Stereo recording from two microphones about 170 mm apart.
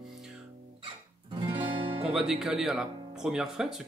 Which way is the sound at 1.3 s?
30° right (ahead or behind).